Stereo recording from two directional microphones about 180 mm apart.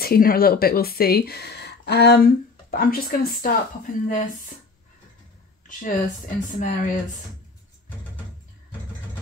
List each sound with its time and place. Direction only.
0.0 s speech: 55° left (ahead or behind)
5.7 s speech: 45° left (ahead or behind)